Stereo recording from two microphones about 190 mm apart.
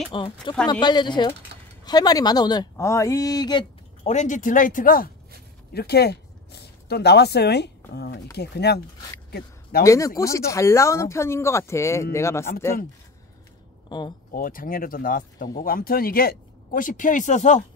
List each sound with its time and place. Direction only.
0.1 s speech: 25° left (ahead or behind)
4.0 s speech: 40° left (ahead or behind)
5.7 s speech: 60° left (ahead or behind)
9.3 s a sound: 55° left (ahead or behind)
9.8 s speech: 15° left (ahead or behind)
13.8 s speech: 25° left (ahead or behind)
14.3 s speech: 50° left (ahead or behind)